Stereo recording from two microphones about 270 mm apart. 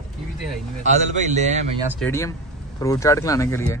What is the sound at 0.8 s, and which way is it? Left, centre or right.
Speech, right.